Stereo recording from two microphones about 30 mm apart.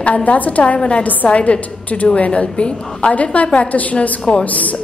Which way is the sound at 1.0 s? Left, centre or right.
Left.